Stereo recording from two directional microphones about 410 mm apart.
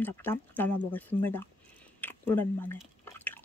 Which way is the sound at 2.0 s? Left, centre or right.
Centre.